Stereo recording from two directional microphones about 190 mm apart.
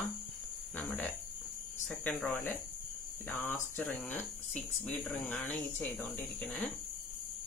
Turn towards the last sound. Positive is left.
turn(degrees=5)  # may be behind; listen again after turning